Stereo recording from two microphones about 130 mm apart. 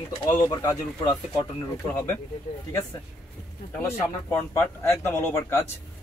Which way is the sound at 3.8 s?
20° left (ahead or behind).